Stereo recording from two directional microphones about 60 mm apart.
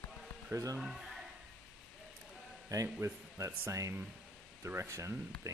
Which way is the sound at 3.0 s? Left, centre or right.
Right.